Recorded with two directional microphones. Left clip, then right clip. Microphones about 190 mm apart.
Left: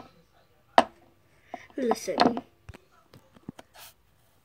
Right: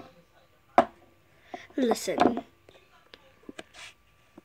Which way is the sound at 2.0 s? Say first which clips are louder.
Left 1 dB; 15° right (ahead or behind).